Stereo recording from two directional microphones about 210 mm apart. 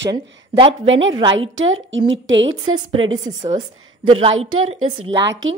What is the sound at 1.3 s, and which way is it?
A woman's voice, 70° right (ahead or behind).